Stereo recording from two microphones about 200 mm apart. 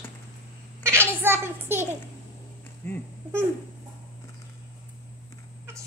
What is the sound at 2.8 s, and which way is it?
Speech, 10° left (ahead or behind).